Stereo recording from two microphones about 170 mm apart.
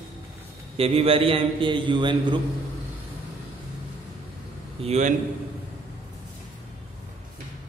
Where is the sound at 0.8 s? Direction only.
35° right (ahead or behind).